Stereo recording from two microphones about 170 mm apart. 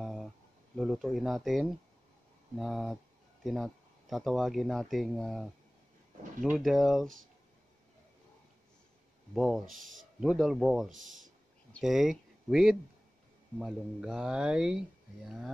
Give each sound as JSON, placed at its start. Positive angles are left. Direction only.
{"t": 0.0, "sound": "a sound", "side_deg": 0}
{"t": 0.7, "sound": "speech", "side_deg": 0}
{"t": 9.3, "sound": "speech", "side_deg": 0}
{"t": 10.9, "sound": "speech", "side_deg": -50}
{"t": 11.7, "sound": "speech", "side_deg": 0}